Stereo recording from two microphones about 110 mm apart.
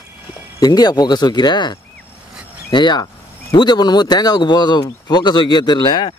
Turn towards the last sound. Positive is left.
turn(degrees=45)  # may be behind; listen again after turning